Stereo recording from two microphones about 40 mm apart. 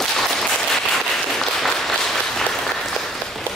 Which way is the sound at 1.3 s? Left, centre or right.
Centre.